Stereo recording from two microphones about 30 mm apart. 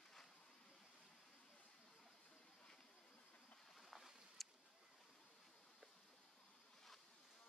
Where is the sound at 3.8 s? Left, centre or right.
Centre.